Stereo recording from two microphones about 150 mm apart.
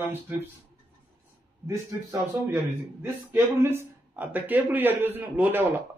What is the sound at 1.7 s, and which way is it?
A man's voice, 20° right (ahead or behind).